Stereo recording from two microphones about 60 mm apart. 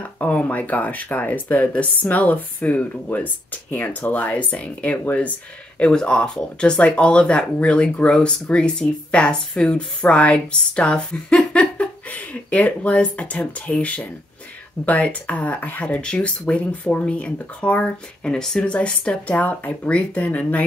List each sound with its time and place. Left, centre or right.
0.2 s speech: left
18.2 s speech: centre